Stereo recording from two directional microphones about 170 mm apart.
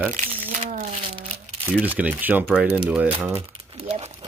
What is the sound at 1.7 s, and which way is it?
Speech, 10° right (ahead or behind).